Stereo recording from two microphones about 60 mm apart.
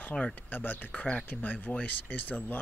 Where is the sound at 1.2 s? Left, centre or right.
Left.